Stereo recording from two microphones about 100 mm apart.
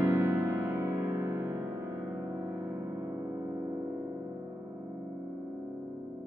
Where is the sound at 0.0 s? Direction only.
20° right (ahead or behind).